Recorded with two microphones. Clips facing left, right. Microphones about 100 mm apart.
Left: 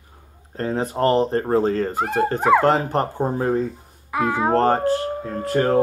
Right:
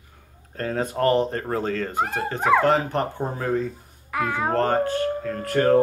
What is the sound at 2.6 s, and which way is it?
Speech, 35° left (ahead or behind).